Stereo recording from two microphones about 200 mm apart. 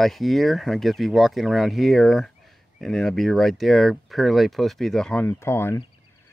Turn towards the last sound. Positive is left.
turn(degrees=10)  # may be behind; listen again after turning